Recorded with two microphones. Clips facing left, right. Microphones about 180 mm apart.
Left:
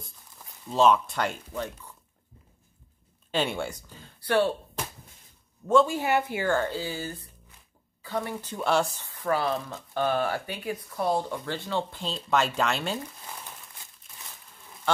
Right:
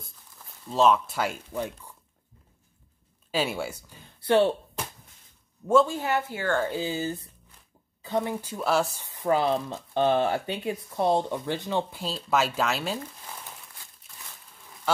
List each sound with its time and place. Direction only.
0.7 s speech: centre (ahead or behind)
3.3 s speech: 5° right (ahead or behind)
4.2 s speech: 25° right (ahead or behind)
5.9 s speech: 10° left (ahead or behind)
6.7 s speech: 20° right (ahead or behind); by 9.0 s centre (ahead or behind)
9.0 s speech: 20° right (ahead or behind); by 13.0 s centre (ahead or behind)